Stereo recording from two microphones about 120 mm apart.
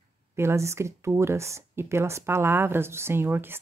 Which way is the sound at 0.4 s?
20° right (ahead or behind).